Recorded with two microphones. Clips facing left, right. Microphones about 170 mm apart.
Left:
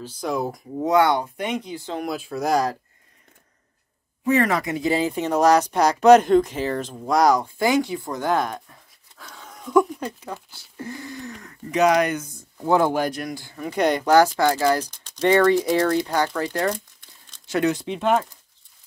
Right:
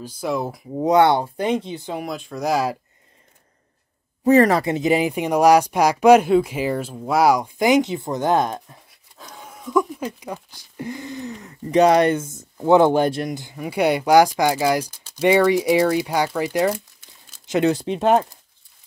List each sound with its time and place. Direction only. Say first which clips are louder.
0.0 s speech: right 1 dB; 10° right (ahead or behind)
0.8 s speech: right 3 dB; 25° right (ahead or behind)
2.0 s speech: even; 5° left (ahead or behind)
4.2 s speech: right 6 dB; 40° right (ahead or behind)
4.7 s speech: right 3 dB; 15° right (ahead or behind)
9.5 s speech: left 2 dB; centre (ahead or behind); by 11.5 s 20° right (ahead or behind)
11.7 s speech: right 4 dB; 30° right (ahead or behind); by 17.4 s 5° right (ahead or behind)
17.5 s speech: right 3 dB; 20° right (ahead or behind)
17.7 s speech: right 4 dB; 40° right (ahead or behind)